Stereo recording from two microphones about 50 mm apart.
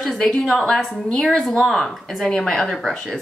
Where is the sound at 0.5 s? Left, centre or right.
Centre.